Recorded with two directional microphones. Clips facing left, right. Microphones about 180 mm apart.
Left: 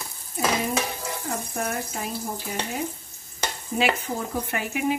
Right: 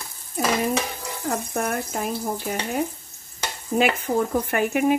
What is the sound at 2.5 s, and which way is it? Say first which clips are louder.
Frying: right 1 dB; 50° right (ahead or behind).